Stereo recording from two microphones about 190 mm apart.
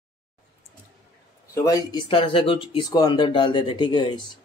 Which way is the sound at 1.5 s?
15° left (ahead or behind).